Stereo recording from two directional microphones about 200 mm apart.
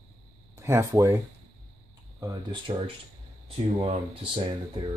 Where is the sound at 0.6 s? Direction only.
15° right (ahead or behind).